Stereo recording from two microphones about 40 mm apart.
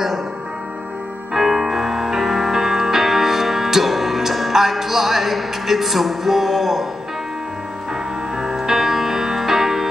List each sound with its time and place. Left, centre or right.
1.3 s music: centre
8.4 s music: centre